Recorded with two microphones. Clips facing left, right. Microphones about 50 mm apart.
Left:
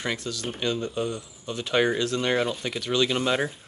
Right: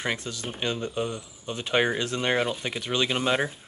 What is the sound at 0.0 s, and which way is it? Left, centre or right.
Speech, right.